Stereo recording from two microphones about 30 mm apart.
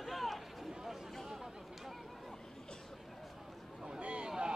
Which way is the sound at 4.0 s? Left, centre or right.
Right.